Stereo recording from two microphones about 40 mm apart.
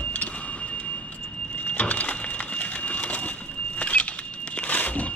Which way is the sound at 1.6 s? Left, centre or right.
Left.